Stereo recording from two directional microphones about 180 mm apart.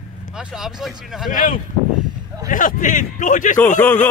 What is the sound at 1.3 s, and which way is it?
A man's voice, 50° left (ahead or behind).